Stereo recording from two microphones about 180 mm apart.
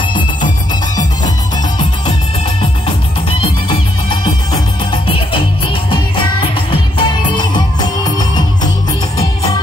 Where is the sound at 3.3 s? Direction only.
30° left (ahead or behind).